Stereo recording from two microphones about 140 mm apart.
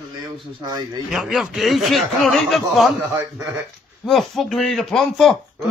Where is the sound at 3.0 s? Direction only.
20° right (ahead or behind).